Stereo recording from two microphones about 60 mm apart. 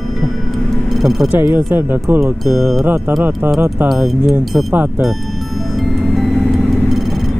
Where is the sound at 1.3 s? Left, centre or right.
Right.